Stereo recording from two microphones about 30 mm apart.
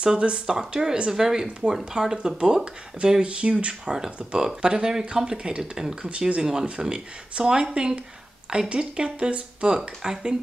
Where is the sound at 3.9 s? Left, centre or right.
Centre.